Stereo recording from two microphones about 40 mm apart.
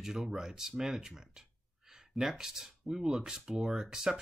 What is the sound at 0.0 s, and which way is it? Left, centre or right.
Speech, centre.